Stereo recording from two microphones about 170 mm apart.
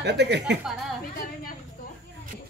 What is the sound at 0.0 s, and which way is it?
Speech, 90° right.